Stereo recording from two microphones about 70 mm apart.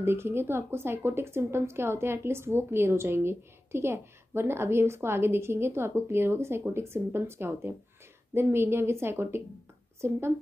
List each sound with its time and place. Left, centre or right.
0.0 s a woman's voice: right